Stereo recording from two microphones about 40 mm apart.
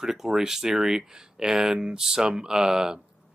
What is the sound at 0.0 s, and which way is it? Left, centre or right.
Speech, centre.